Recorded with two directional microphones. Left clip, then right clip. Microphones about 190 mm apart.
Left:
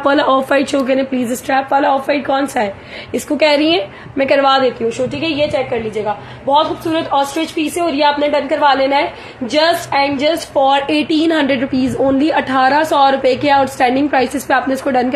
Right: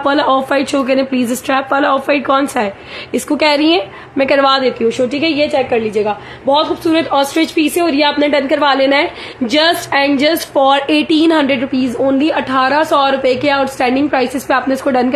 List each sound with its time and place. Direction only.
0.0 s speech: centre (ahead or behind)
0.7 s a woman's voice: 15° right (ahead or behind)